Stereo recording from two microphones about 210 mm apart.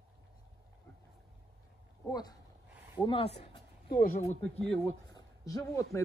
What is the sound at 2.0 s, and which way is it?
Speech, 20° left (ahead or behind).